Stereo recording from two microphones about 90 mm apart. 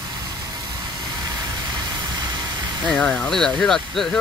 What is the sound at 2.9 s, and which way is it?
Speech, 15° left (ahead or behind).